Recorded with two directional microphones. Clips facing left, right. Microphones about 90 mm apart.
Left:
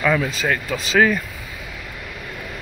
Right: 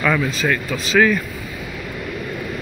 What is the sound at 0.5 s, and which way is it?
Speech, 25° left (ahead or behind).